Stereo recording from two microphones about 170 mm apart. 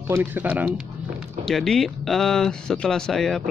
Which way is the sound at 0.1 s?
10° right (ahead or behind).